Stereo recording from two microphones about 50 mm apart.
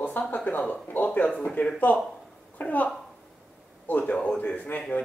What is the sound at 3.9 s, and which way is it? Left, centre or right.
Speech, left.